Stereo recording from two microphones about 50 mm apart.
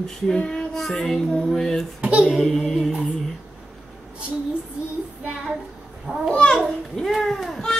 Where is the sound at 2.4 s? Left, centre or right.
Centre.